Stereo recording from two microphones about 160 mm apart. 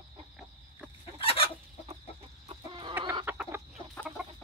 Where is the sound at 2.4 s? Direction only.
35° right (ahead or behind).